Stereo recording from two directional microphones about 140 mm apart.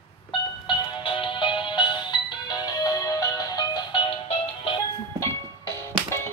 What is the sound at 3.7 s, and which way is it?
Music, 35° left (ahead or behind).